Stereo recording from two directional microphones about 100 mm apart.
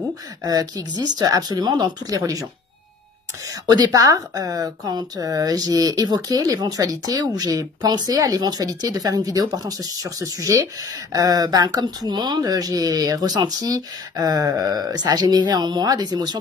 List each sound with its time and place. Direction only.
0.4 s speech: 40° right (ahead or behind)
3.6 s speech: 40° right (ahead or behind)